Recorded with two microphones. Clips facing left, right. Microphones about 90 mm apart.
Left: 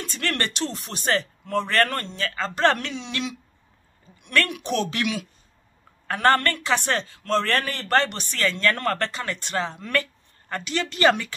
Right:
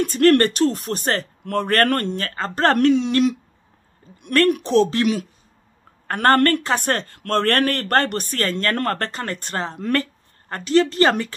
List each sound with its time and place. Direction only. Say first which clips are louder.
0.0 s speech: right 13 dB; 50° right (ahead or behind)
1.4 s speech: right 6 dB; 55° right (ahead or behind)
4.6 s speech: right 8 dB; 30° right (ahead or behind)
6.0 s speech: right 4 dB; 50° right (ahead or behind)